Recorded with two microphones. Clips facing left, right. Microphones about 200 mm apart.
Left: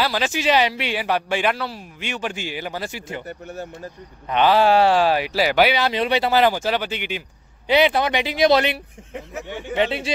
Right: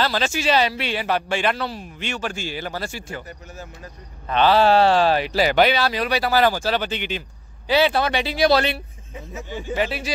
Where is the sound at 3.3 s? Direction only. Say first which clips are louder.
Left 6 dB; 60° left (ahead or behind).